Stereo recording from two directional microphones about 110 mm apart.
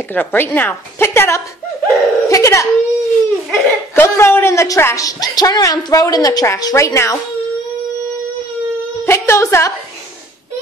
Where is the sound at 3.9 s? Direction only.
25° left (ahead or behind).